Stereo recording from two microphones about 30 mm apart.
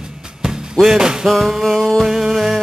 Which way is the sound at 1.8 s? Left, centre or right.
Centre.